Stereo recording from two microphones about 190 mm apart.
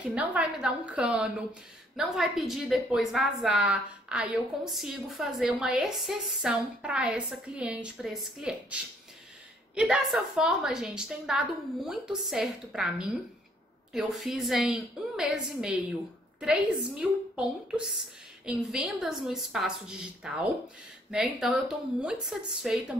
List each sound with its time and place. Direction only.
0.0 s a woman's voice: 5° right (ahead or behind)
9.8 s a woman's voice: 5° right (ahead or behind)